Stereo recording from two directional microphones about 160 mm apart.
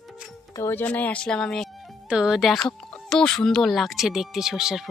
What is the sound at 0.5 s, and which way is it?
Speech, 15° left (ahead or behind).